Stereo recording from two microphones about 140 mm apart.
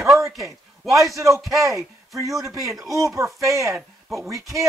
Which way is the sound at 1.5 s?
20° right (ahead or behind).